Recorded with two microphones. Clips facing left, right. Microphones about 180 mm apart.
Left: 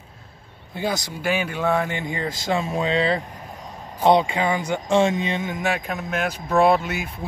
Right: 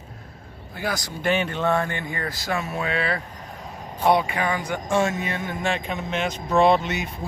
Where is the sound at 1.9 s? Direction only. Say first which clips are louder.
Left 3 dB; 20° left (ahead or behind).